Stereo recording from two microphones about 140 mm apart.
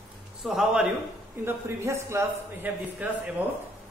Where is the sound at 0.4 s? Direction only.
5° right (ahead or behind).